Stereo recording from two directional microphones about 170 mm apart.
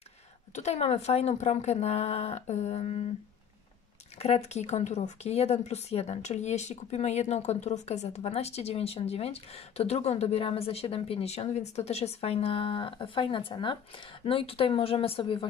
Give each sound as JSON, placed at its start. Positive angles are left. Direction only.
{"t": 0.6, "sound": "a woman's voice", "side_deg": 40}
{"t": 4.2, "sound": "a woman's voice", "side_deg": 40}